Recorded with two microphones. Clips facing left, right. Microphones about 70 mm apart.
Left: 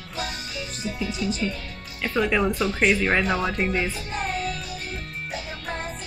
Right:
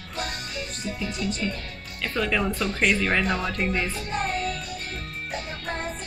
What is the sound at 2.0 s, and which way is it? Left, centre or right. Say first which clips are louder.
Speech: left 3 dB; centre.